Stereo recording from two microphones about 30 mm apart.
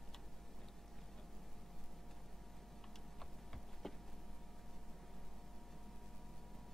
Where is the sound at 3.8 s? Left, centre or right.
Centre.